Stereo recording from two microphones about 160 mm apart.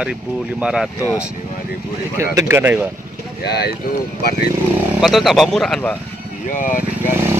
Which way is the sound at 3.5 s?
90° left.